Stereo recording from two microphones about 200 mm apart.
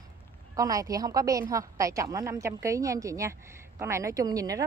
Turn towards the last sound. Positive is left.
turn(degrees=-15)  # may be behind; listen again after turning